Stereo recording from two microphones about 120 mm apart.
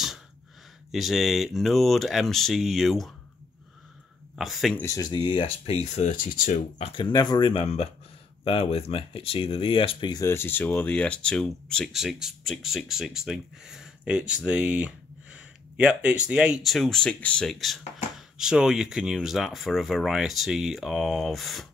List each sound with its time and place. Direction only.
0.9 s speech: centre (ahead or behind)
4.4 s speech: centre (ahead or behind)
4.8 s speech: 30° left (ahead or behind)
5.7 s speech: 65° left (ahead or behind); by 6.9 s 90° left
6.9 s speech: 40° left (ahead or behind)
7.6 s speech: 55° left (ahead or behind)
10.2 s speech: 20° left (ahead or behind); by 21.6 s centre (ahead or behind)